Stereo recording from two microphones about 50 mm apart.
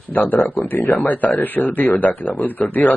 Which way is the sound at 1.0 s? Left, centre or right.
Left.